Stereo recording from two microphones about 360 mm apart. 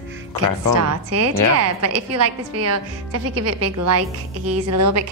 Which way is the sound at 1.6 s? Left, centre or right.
Right.